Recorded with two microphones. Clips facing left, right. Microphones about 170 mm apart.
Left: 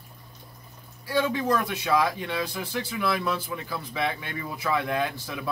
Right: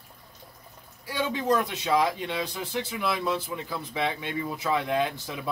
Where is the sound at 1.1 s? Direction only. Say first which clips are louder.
Left 1 dB; 15° right (ahead or behind).